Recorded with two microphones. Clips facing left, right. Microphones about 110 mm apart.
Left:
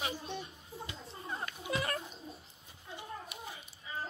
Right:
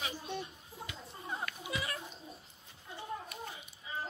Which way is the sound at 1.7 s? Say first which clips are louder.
Left 5 dB; 50° left (ahead or behind).